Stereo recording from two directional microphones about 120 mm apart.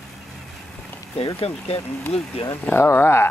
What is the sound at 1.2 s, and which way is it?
Speech, 55° left (ahead or behind).